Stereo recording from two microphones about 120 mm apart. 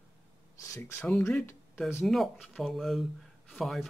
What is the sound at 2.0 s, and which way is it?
Speech, centre (ahead or behind).